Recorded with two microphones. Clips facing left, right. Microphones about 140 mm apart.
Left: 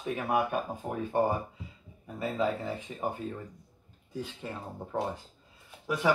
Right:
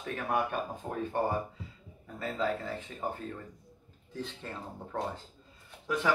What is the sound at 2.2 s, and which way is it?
Speech, 15° left (ahead or behind).